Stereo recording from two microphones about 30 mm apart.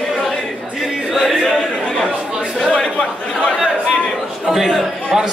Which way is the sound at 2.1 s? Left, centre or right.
Right.